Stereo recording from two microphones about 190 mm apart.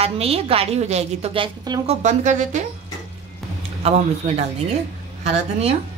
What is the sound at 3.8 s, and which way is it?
Speech, 35° right (ahead or behind).